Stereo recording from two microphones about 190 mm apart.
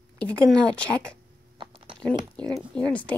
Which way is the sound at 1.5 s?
25° right (ahead or behind).